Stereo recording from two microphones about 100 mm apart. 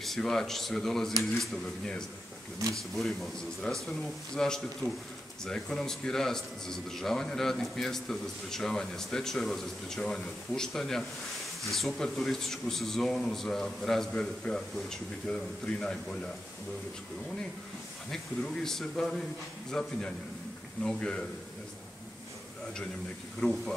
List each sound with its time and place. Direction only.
0.0 s a man's voice: centre (ahead or behind)
3.7 s a man's voice: 10° left (ahead or behind)
18.1 s a man's voice: 5° left (ahead or behind)
23.4 s a man's voice: 5° left (ahead or behind)